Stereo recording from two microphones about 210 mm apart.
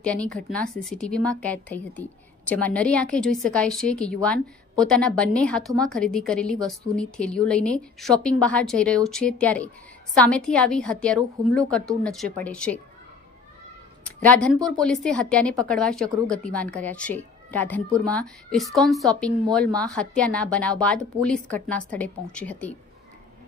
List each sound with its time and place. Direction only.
0.0 s a woman's voice: 5° left (ahead or behind)
14.0 s a woman's voice: 5° left (ahead or behind)